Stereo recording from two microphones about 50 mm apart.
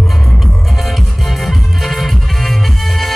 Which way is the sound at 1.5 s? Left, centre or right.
Centre.